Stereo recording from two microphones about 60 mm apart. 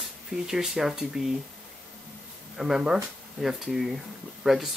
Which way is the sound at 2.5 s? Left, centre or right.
Centre.